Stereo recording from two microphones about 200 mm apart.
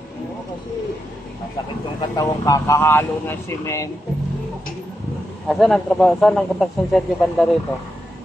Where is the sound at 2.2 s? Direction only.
15° left (ahead or behind).